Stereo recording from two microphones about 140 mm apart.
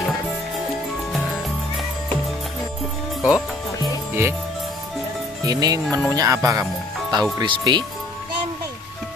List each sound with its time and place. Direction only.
3.2 s speech: 5° right (ahead or behind)
4.1 s music: 15° right (ahead or behind)
5.4 s speech: 25° right (ahead or behind)